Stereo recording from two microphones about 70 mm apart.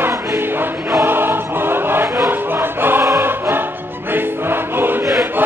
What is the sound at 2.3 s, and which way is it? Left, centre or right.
Music, right.